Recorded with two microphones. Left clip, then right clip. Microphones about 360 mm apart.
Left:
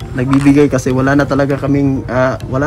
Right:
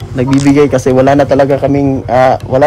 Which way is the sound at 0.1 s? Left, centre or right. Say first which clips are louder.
Right 2 dB; centre.